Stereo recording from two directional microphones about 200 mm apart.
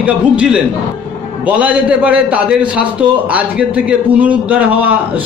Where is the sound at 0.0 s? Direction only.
5° right (ahead or behind).